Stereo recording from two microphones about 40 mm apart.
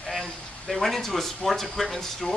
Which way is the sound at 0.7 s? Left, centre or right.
Centre.